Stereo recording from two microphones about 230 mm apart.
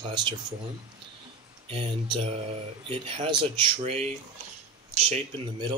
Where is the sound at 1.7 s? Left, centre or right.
Right.